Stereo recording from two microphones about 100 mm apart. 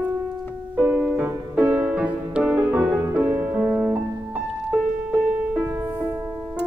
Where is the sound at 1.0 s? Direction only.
15° right (ahead or behind).